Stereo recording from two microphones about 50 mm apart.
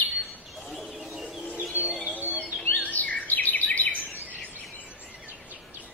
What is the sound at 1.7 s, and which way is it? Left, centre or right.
Music, right.